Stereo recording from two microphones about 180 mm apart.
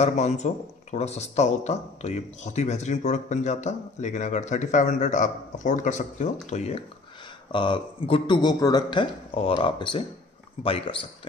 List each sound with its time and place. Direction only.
0.0 s speech: 40° left (ahead or behind)
7.5 s speech: 25° left (ahead or behind)